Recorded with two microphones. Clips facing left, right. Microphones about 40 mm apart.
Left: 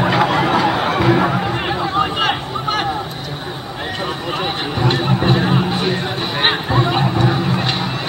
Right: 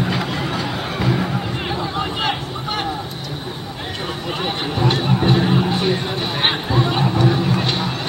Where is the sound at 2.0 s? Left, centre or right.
Left.